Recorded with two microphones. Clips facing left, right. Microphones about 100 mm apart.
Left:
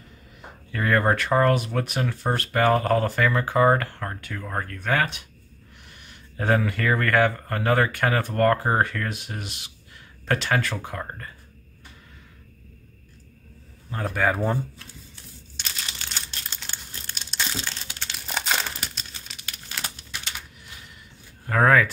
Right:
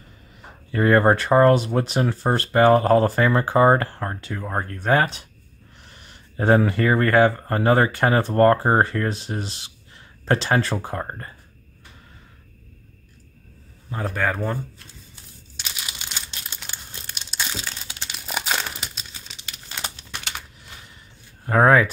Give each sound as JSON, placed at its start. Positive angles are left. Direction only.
{"t": 0.7, "sound": "speech", "side_deg": -30}
{"t": 13.8, "sound": "speech", "side_deg": 0}
{"t": 15.5, "sound": "crumpling", "side_deg": -10}
{"t": 19.5, "sound": "crumpling", "side_deg": -20}
{"t": 21.5, "sound": "speech", "side_deg": -25}